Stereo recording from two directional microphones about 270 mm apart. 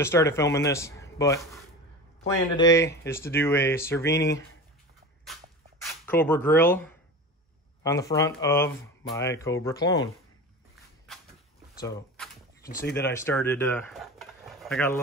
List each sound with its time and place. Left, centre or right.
0.0 s a man's voice: centre
2.5 s speech: centre
4.1 s speech: left
5.2 s a sound: centre
7.8 s speech: centre
12.9 s speech: centre